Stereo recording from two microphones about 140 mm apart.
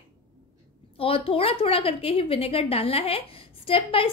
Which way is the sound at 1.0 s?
40° left (ahead or behind).